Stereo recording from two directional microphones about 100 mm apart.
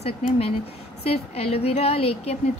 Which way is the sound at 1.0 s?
90° left.